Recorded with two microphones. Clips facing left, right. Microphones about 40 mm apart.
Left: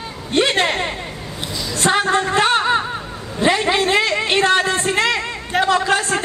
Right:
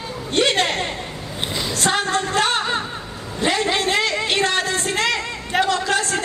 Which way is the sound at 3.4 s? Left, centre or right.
Centre.